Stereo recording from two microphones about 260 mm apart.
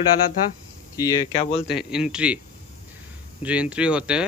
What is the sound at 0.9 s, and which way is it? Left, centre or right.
Speech, centre.